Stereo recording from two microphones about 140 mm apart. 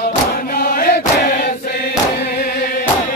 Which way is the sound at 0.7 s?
90° left.